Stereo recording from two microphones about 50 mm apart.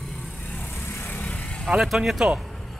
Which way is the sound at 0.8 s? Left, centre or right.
Left.